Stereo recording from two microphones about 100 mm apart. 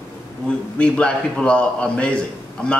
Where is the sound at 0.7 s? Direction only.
10° left (ahead or behind).